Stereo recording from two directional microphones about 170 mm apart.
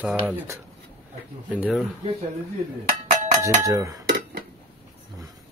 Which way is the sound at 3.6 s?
20° right (ahead or behind).